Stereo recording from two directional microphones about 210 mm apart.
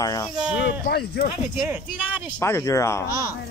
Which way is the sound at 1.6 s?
10° right (ahead or behind).